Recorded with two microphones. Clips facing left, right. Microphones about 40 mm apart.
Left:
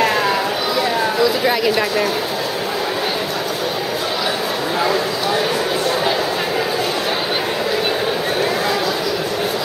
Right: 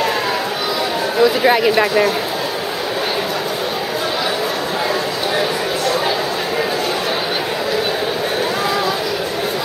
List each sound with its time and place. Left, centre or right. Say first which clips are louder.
1.2 s speech: right 6 dB; centre